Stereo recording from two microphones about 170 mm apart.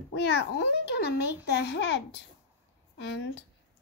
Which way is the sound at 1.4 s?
85° left.